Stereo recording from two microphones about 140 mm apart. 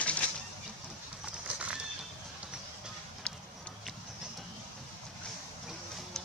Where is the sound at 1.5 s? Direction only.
10° right (ahead or behind).